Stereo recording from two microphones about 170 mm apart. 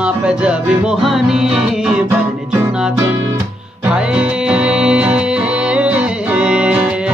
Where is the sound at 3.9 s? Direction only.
5° right (ahead or behind).